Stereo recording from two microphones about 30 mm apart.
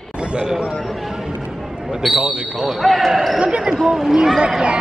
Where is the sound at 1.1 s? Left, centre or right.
Centre.